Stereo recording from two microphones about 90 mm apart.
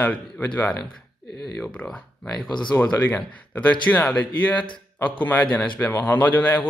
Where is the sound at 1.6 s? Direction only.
15° left (ahead or behind).